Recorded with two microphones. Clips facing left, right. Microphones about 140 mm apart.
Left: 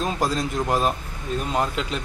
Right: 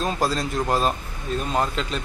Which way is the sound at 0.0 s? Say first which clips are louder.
Even; 15° left (ahead or behind).